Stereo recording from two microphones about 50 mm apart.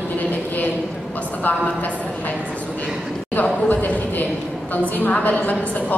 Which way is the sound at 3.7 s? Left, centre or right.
Left.